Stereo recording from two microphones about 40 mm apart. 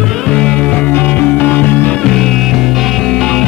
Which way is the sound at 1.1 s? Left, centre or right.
Left.